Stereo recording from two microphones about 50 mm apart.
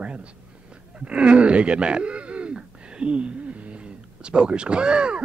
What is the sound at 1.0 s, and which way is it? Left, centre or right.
Speech, right.